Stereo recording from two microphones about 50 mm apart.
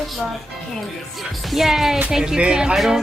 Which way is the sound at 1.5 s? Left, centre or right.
Centre.